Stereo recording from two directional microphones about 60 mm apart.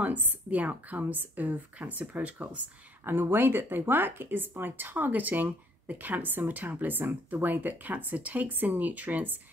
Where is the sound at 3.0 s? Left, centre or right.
Right.